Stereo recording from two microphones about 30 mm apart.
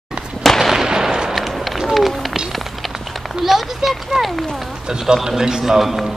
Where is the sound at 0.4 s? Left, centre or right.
Centre.